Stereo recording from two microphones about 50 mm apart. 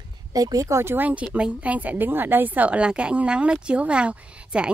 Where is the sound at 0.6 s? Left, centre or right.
Right.